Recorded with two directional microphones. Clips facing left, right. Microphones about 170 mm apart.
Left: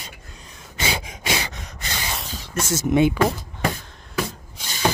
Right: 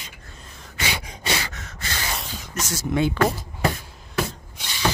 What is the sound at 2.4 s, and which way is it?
Speech, 25° left (ahead or behind).